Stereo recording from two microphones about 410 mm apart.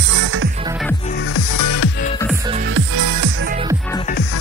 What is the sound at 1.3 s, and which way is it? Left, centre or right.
Music, left.